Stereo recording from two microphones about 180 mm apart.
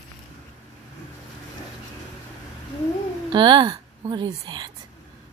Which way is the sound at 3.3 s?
25° right (ahead or behind).